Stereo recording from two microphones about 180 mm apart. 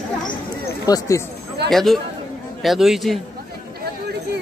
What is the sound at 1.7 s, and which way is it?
A man's voice, centre (ahead or behind).